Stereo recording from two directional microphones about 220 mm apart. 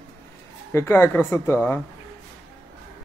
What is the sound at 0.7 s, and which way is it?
Speech, 10° left (ahead or behind).